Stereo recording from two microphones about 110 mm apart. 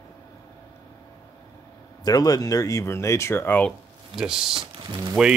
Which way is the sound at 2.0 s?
35° left (ahead or behind).